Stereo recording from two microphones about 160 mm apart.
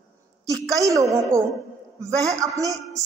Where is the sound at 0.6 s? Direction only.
20° right (ahead or behind).